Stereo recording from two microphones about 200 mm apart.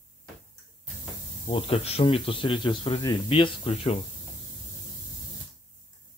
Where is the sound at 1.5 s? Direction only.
30° left (ahead or behind).